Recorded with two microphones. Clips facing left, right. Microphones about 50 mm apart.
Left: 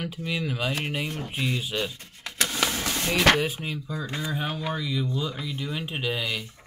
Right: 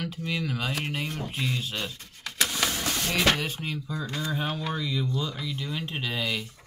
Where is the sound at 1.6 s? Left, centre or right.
Centre.